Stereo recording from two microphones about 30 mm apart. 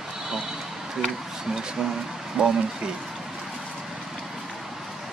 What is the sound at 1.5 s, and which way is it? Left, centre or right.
Speech, right.